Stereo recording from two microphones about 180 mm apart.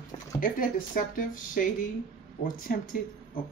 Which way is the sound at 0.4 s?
50° left (ahead or behind).